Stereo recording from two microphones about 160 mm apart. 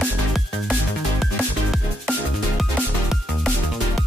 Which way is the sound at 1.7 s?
Centre (ahead or behind).